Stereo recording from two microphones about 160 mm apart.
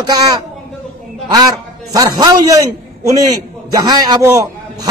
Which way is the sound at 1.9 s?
20° right (ahead or behind).